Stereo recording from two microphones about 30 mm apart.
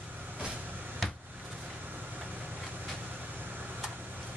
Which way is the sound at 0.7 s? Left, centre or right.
Right.